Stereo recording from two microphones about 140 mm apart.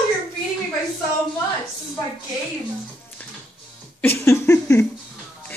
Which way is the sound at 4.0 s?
15° left (ahead or behind).